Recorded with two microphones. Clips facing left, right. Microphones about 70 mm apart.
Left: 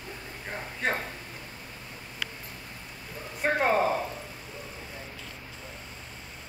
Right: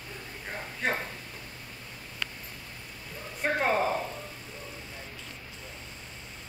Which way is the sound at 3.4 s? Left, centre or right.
Centre.